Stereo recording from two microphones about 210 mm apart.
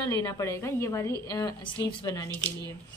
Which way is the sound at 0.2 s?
15° left (ahead or behind).